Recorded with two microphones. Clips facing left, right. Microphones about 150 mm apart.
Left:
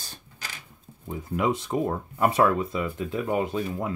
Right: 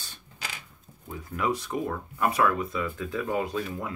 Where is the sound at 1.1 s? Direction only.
20° left (ahead or behind).